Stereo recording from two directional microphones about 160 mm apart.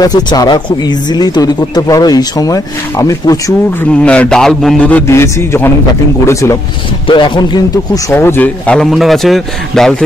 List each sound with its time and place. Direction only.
0.0 s speech: 25° left (ahead or behind)
3.9 s a man's voice: 5° left (ahead or behind)
7.1 s speech: 30° left (ahead or behind)
8.1 s speech: 15° left (ahead or behind)